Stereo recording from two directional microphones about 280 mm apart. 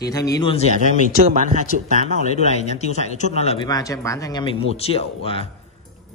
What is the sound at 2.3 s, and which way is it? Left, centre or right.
A man's voice, left.